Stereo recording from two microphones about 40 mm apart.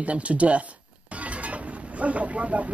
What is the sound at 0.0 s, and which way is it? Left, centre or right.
Speech, right.